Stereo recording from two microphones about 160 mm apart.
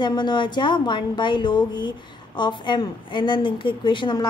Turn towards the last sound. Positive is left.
turn(degrees=30)  # may be behind; listen again after turning